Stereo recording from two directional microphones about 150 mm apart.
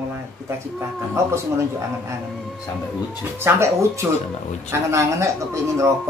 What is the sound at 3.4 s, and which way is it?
A woman's voice, 20° right (ahead or behind).